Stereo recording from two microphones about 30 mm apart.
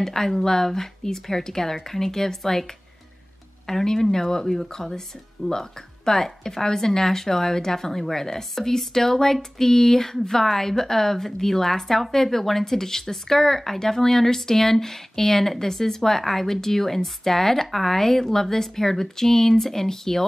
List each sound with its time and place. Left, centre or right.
0.0 s a woman's voice: centre
4.5 s a woman's voice: centre